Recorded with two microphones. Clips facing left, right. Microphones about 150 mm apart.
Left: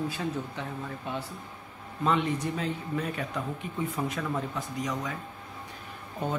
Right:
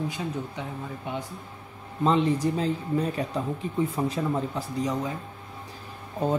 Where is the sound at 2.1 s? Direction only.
35° right (ahead or behind).